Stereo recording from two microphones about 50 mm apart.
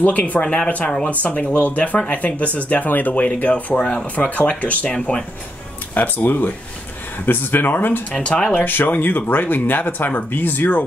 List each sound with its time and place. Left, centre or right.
0.0 s speech: left
5.9 s speech: left
8.1 s speech: left
8.6 s speech: left